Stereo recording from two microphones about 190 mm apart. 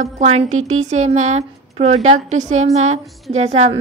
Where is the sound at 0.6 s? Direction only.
90° right.